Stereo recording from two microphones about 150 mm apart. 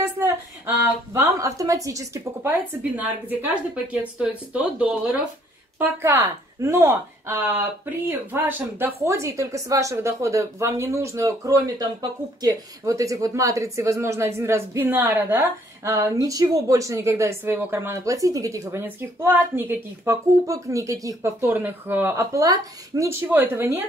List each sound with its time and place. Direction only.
0.2 s a sound: 15° right (ahead or behind)
1.1 s speech: 20° right (ahead or behind)
3.0 s a woman's voice: 10° right (ahead or behind)